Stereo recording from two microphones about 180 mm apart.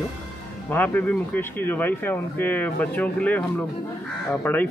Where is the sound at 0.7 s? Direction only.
10° left (ahead or behind).